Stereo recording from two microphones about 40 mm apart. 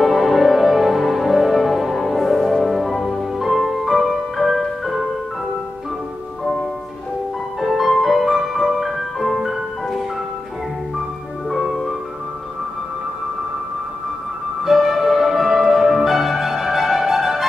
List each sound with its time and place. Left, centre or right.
0.0 s music: centre
7.6 s music: centre
11.5 s music: centre
14.6 s music: centre